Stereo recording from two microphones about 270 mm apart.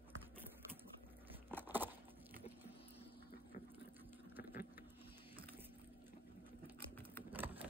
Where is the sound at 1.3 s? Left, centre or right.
Centre.